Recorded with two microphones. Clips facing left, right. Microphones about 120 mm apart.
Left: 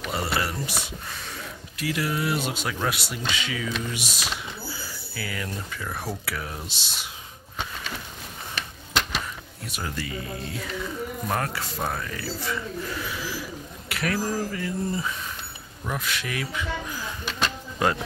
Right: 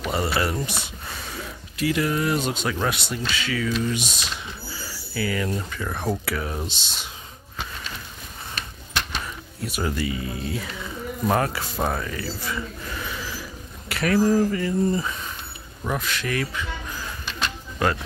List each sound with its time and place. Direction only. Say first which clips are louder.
0.1 s speech: right 3 dB; centre (ahead or behind)
3.3 s speech: right 2 dB; 20° left (ahead or behind)
3.6 s speech: right 6 dB; 5° left (ahead or behind)
5.1 s speech: right 8 dB; centre (ahead or behind)
9.7 s speech: right 6 dB; 5° right (ahead or behind)